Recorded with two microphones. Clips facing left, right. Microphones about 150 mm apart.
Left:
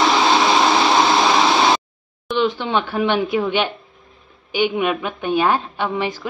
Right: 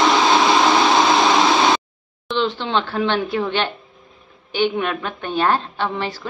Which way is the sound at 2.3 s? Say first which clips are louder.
Left 2 dB; 10° left (ahead or behind).